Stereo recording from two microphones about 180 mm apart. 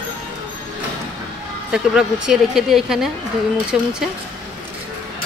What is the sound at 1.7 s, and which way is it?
Speech, 5° right (ahead or behind).